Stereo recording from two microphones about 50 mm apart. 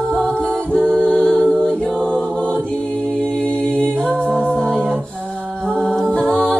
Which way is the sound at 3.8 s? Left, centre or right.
Right.